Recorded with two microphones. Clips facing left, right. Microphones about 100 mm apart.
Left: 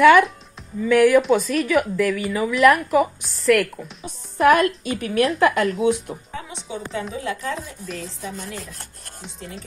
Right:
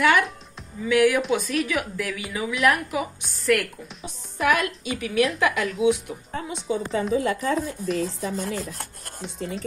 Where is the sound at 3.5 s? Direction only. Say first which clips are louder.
Left 5 dB; 55° left (ahead or behind).